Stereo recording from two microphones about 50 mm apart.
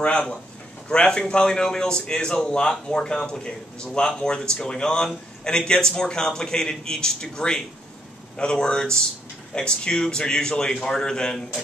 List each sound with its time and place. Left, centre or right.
0.0 s a man's voice: centre